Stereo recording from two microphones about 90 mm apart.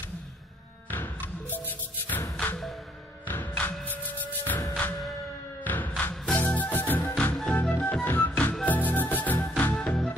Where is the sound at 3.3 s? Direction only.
20° left (ahead or behind).